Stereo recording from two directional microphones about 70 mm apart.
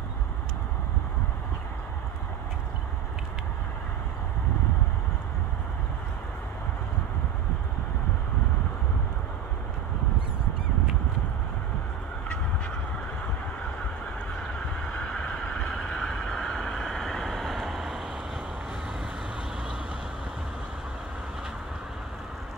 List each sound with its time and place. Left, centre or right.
14.9 s vehicle: centre